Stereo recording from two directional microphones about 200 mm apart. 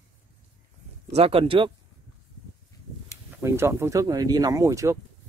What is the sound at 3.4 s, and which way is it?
Speech, 10° right (ahead or behind).